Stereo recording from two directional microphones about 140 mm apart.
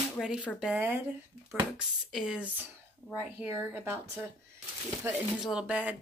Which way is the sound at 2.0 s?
5° right (ahead or behind).